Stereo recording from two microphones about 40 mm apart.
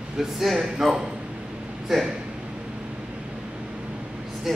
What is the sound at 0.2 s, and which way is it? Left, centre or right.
Speech, centre.